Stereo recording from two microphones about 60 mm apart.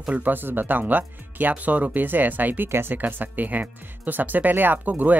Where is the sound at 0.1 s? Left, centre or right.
Right.